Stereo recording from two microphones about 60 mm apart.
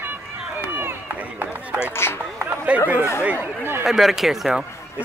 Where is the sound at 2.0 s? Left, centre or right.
Left.